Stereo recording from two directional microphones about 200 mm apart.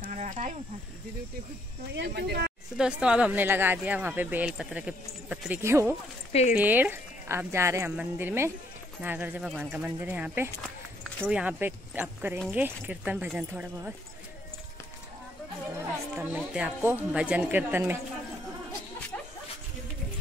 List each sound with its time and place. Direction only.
0.0 s a sound: 40° right (ahead or behind)
1.9 s speech: 55° right (ahead or behind)
2.8 s speech: 5° right (ahead or behind)
10.6 s a sound: 5° left (ahead or behind)
11.2 s speech: 5° right (ahead or behind)
16.2 s speech: 5° right (ahead or behind)